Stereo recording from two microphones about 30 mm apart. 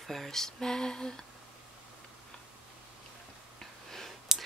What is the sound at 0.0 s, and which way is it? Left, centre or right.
Speech, centre.